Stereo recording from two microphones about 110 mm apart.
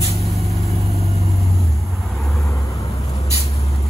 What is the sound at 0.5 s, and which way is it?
Vehicle, 70° right (ahead or behind).